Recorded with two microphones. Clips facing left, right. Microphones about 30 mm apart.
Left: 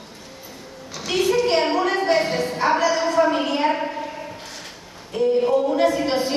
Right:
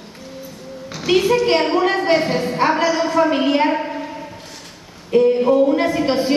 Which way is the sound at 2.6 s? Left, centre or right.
Right.